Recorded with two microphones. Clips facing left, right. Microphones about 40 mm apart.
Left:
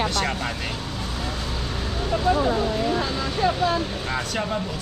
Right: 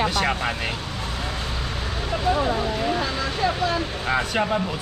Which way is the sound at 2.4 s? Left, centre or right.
Centre.